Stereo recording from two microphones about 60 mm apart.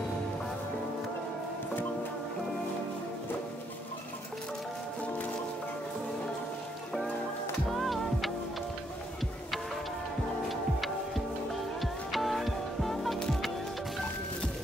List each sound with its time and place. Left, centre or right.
7.7 s music: centre
10.5 s music: centre